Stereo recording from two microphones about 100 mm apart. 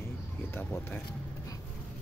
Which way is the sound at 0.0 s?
25° left (ahead or behind).